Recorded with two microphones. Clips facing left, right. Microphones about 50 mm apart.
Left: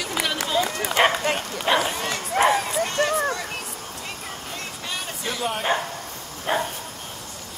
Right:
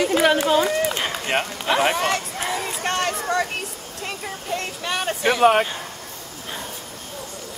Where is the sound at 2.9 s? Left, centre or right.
Right.